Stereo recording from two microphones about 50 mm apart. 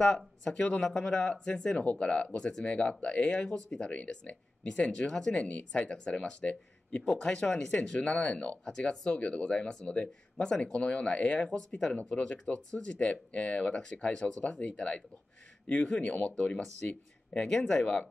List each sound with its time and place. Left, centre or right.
0.8 s speech: centre